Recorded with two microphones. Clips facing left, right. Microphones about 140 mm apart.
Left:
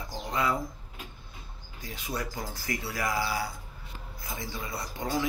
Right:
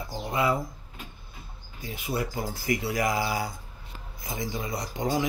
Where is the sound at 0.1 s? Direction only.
5° right (ahead or behind).